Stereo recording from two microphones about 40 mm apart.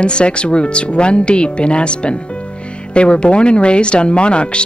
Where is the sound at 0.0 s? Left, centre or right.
Left.